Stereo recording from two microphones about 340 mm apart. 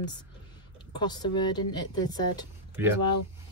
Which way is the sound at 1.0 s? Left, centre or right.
Centre.